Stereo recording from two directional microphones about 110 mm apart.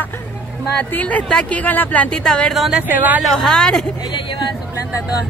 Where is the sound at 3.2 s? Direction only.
5° left (ahead or behind).